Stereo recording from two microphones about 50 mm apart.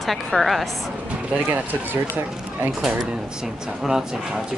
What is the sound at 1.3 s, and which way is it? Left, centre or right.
Speech, right.